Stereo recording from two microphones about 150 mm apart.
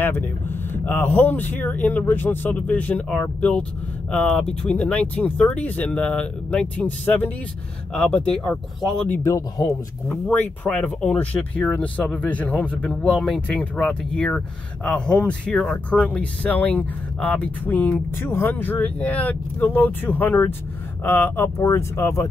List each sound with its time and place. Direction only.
0.0 s speech: 15° left (ahead or behind)
9.2 s speech: 20° left (ahead or behind)
10.0 s speech: 10° left (ahead or behind)